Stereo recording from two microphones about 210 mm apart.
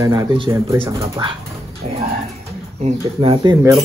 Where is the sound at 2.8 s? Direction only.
25° right (ahead or behind).